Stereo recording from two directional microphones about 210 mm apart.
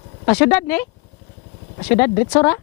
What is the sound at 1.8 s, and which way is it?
Speech, 15° left (ahead or behind).